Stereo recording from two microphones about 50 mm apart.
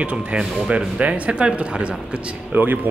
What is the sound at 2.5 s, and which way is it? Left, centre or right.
Speech, right.